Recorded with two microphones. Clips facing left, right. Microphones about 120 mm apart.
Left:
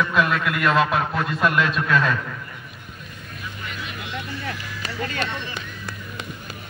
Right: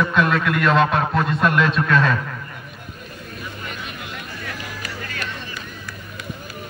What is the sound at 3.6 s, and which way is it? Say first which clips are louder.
Vehicle: right 1 dB; 45° right (ahead or behind).